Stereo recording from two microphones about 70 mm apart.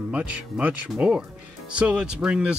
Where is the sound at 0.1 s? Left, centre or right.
Right.